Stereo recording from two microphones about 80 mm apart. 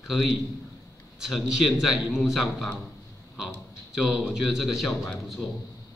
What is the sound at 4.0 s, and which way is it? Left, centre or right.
Speech, centre.